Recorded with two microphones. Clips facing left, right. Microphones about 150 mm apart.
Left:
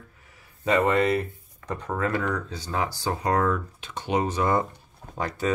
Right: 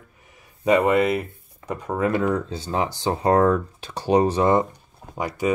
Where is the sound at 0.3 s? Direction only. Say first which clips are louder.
Right 5 dB; 20° right (ahead or behind).